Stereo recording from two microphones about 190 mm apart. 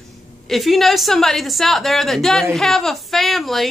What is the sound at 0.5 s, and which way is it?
Speech, centre (ahead or behind).